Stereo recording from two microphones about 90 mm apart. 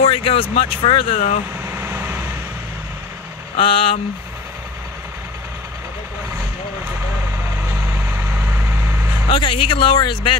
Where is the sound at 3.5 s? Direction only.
80° left.